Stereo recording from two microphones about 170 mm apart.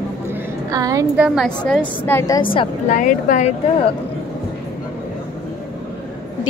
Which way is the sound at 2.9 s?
50° left (ahead or behind).